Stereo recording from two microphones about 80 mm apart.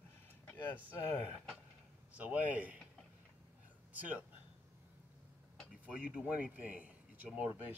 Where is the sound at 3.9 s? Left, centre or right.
Centre.